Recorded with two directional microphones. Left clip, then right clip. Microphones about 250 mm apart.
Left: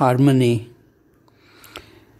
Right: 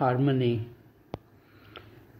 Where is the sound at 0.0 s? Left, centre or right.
Left.